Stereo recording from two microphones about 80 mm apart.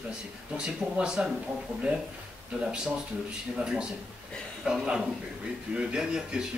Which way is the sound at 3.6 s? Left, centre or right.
Centre.